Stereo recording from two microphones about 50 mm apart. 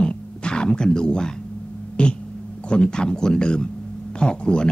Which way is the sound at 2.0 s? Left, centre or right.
Left.